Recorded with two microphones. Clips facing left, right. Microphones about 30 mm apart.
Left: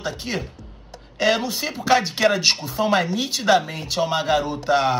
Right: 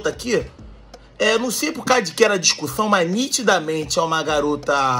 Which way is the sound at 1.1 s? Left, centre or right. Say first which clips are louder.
Right 2 dB; left.